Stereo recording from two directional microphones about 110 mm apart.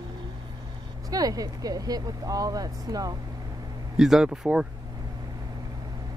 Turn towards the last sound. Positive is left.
turn(degrees=-5)  # may be behind; listen again after turning